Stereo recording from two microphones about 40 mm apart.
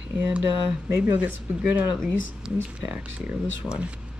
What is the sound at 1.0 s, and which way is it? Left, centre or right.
Speech, right.